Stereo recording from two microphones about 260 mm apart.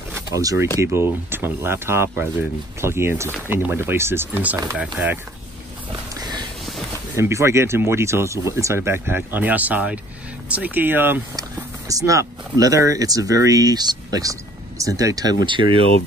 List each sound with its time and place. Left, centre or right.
0.1 s a sound: centre
0.7 s speech: centre
6.1 s music: centre
7.2 s speech: centre